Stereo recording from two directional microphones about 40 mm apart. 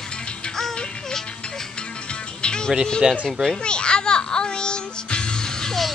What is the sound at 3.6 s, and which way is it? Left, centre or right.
Music, left.